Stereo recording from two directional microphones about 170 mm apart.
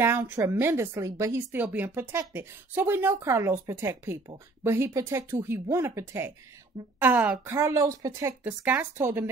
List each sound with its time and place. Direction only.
0.0 s a woman's voice: 15° right (ahead or behind)